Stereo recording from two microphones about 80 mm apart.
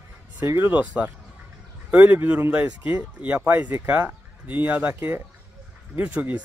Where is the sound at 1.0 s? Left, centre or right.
Centre.